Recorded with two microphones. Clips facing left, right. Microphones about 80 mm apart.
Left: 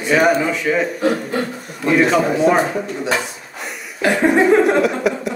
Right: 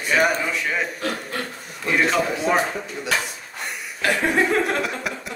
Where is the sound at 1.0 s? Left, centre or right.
Centre.